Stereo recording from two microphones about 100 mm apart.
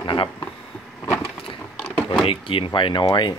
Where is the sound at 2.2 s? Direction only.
60° left (ahead or behind).